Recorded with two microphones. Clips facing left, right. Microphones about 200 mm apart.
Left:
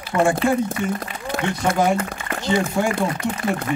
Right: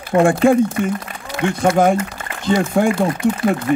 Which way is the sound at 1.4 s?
50° right (ahead or behind).